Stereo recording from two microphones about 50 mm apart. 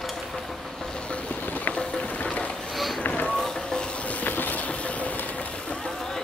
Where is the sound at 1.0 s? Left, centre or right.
Left.